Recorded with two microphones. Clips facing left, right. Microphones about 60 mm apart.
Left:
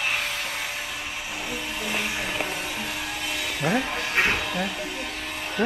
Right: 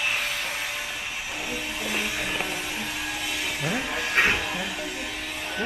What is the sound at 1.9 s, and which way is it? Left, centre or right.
Music, left.